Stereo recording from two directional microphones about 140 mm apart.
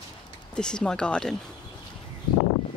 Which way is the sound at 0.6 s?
5° left (ahead or behind).